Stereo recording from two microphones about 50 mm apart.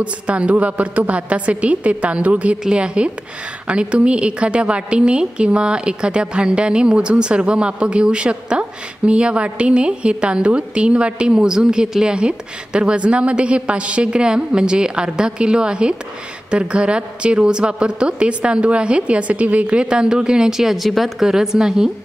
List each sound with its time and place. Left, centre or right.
0.0 s a woman's voice: right